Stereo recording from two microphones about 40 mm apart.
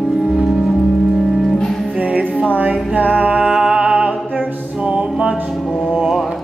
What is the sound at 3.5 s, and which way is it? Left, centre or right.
Music, centre.